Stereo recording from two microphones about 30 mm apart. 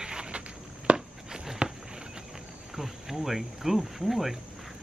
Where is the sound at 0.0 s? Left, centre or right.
Right.